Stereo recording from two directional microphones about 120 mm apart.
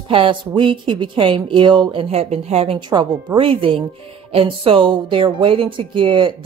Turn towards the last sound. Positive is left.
turn(degrees=-45)  # may be behind; listen again after turning